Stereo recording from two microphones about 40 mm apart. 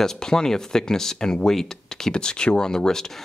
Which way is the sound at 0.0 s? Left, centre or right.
Centre.